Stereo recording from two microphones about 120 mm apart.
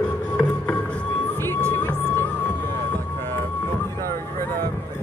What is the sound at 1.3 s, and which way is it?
Music, 20° left (ahead or behind).